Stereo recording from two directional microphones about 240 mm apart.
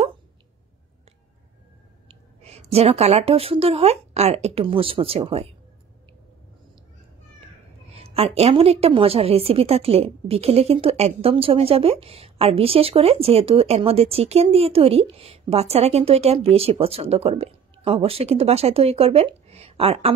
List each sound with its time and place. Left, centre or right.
2.0 s a woman's voice: right
7.9 s a woman's voice: right